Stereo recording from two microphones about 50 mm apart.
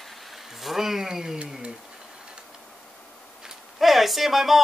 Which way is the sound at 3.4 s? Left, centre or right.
Centre.